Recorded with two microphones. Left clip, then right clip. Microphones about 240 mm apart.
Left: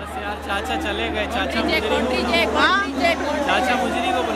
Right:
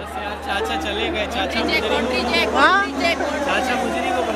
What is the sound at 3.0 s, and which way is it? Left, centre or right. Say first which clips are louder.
Vehicle: even; left.